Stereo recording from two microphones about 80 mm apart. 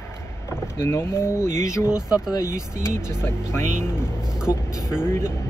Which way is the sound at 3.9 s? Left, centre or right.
Centre.